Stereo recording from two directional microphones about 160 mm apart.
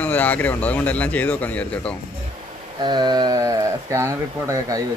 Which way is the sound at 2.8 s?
25° right (ahead or behind).